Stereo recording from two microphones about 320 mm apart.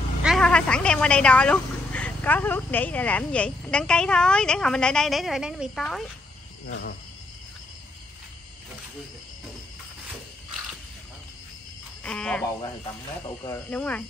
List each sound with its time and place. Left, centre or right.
0.2 s speech: centre
6.7 s cricket: left
12.0 s speech: centre